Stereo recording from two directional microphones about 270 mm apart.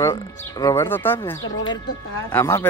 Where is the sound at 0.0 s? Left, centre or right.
Centre.